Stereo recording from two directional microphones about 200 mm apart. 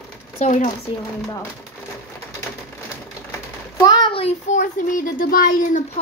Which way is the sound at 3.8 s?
20° left (ahead or behind).